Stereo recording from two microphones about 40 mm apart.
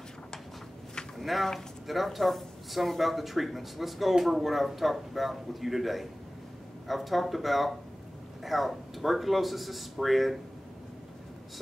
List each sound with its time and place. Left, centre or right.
1.1 s speech: centre